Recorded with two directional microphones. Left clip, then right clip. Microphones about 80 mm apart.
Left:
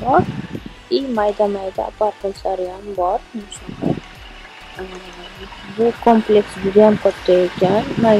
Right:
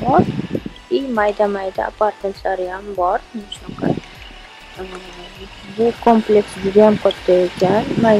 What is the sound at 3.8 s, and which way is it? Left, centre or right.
Music, right.